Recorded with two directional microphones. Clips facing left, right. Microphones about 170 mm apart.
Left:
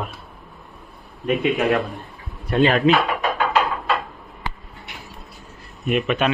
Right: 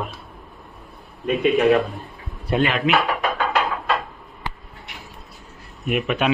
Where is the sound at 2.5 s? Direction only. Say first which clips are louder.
Left 2 dB; 20° right (ahead or behind).